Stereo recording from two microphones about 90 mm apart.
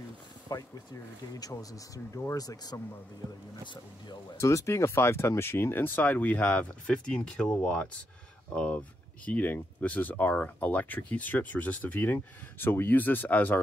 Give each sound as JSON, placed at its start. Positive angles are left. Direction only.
{"t": 0.5, "sound": "speech", "side_deg": 45}
{"t": 3.6, "sound": "speech", "side_deg": 60}
{"t": 4.4, "sound": "speech", "side_deg": 35}